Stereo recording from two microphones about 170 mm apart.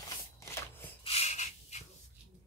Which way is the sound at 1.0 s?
35° left (ahead or behind).